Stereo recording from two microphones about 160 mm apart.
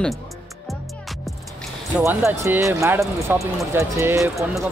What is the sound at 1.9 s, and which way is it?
Speech, 15° right (ahead or behind).